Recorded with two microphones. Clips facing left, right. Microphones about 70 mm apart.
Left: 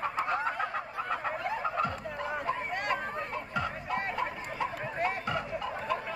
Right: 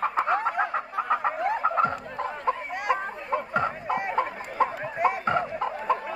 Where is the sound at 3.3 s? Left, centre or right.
Right.